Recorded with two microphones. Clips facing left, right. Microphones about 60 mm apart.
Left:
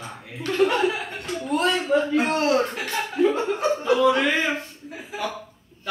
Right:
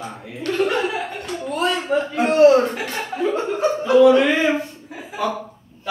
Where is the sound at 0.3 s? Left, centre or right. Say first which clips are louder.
Right 1 dB; centre.